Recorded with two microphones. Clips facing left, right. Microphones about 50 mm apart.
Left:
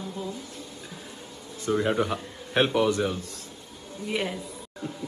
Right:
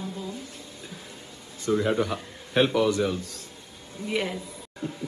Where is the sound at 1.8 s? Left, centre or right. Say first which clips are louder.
Even; centre.